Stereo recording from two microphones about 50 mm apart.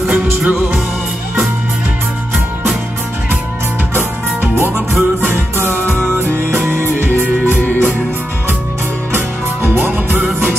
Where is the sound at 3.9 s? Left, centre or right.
Right.